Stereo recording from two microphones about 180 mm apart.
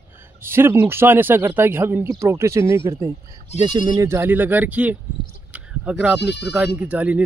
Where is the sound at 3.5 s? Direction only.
35° left (ahead or behind).